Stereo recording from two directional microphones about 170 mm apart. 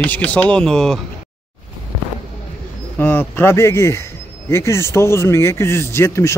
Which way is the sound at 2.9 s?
10° left (ahead or behind).